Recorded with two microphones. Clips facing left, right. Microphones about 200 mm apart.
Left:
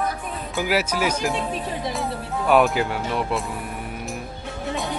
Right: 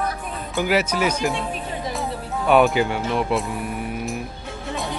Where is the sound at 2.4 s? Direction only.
Centre (ahead or behind).